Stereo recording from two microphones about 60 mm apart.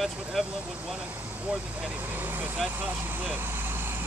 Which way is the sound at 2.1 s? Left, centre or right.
Right.